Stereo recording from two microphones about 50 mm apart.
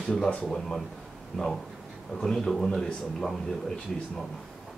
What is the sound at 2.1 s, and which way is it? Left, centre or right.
Speech, centre.